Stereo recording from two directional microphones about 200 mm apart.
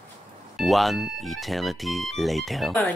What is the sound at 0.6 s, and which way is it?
Speech, centre (ahead or behind).